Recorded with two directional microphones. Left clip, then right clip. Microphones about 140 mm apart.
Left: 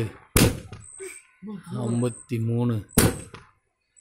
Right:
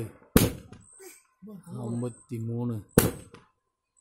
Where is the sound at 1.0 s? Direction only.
50° right (ahead or behind).